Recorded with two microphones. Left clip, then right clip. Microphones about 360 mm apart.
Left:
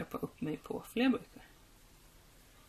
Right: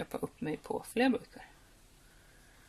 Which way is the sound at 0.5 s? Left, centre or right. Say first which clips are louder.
Right 6 dB; centre.